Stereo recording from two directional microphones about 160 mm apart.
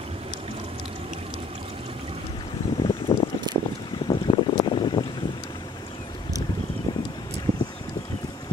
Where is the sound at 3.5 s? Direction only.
25° right (ahead or behind).